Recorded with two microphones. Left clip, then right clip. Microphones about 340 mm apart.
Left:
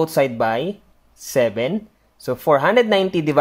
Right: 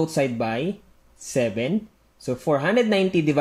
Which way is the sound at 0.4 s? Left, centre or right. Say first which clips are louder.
Left 6 dB; centre.